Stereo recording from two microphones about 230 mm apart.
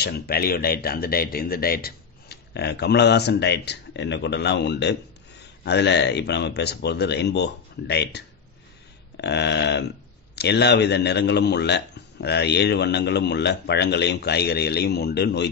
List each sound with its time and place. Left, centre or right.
0.0 s speech: left